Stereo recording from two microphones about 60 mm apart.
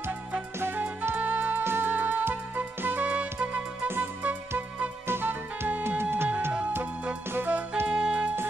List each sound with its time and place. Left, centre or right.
0.6 s music: right
1.6 s music: right
3.1 s music: right
3.8 s music: right
4.6 s music: right
5.0 s music: right
7.8 s music: centre